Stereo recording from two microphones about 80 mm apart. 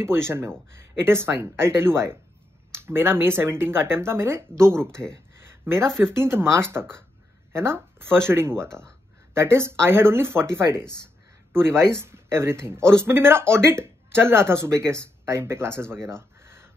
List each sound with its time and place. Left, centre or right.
0.0 s speech: right